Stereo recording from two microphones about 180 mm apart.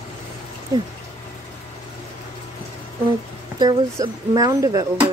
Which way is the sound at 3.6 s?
20° right (ahead or behind).